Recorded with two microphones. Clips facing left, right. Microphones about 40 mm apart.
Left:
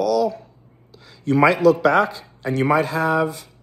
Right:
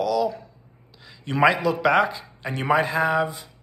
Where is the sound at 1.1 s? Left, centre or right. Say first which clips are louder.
Left 5 dB; right.